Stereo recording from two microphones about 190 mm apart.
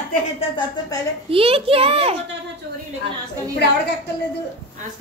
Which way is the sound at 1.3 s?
30° right (ahead or behind).